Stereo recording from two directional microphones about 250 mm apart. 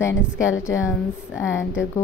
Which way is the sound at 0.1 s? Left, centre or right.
Left.